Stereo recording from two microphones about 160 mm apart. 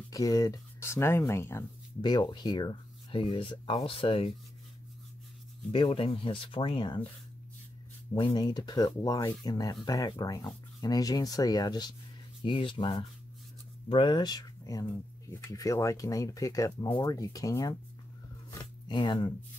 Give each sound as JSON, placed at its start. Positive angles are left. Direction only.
{"t": 0.1, "sound": "speech", "side_deg": 20}
{"t": 2.0, "sound": "speech", "side_deg": 25}
{"t": 5.7, "sound": "speech", "side_deg": 35}
{"t": 8.1, "sound": "speech", "side_deg": 25}
{"t": 18.9, "sound": "speech", "side_deg": 30}